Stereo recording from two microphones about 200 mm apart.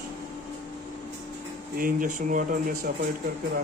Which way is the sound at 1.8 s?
45° right (ahead or behind).